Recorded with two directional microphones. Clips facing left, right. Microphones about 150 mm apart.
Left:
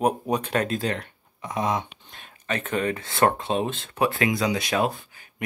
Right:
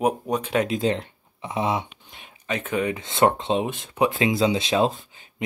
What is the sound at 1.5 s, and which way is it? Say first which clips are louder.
Speech: right 1 dB; 15° right (ahead or behind).